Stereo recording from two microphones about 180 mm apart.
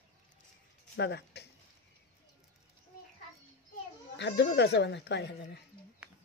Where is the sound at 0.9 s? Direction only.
70° left (ahead or behind).